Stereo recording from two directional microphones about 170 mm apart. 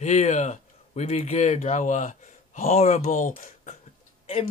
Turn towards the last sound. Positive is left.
turn(degrees=40)  # may be behind; listen again after turning